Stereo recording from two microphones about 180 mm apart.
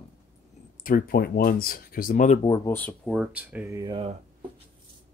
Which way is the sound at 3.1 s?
5° right (ahead or behind).